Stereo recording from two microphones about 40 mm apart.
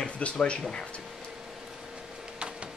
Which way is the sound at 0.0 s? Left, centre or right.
Left.